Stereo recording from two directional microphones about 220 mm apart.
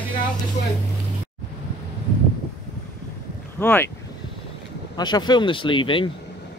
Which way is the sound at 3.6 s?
10° left (ahead or behind).